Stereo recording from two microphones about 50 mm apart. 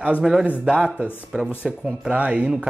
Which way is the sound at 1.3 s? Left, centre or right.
Centre.